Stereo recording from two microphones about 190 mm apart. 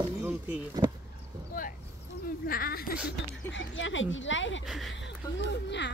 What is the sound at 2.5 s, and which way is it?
Speech, 50° left (ahead or behind).